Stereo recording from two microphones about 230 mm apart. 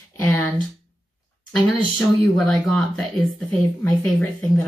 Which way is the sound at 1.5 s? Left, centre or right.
Centre.